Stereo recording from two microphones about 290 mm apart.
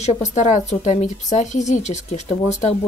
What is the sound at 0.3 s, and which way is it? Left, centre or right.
A woman's voice, left.